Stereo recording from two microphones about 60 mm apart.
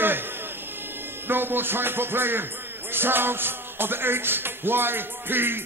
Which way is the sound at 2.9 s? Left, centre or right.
Right.